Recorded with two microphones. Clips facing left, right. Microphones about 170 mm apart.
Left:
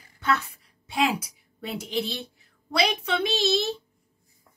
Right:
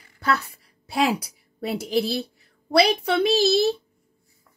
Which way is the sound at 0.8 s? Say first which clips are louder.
Right 3 dB; 35° right (ahead or behind).